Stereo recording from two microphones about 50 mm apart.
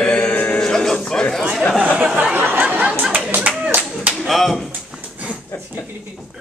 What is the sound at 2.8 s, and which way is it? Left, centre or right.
Chatter, right.